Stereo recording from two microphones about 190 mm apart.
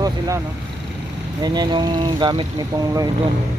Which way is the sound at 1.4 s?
20° right (ahead or behind).